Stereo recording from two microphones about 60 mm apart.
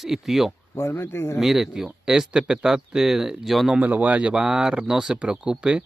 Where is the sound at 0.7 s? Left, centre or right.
Left.